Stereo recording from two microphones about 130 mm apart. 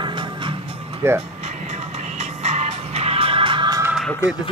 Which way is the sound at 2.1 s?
60° right (ahead or behind).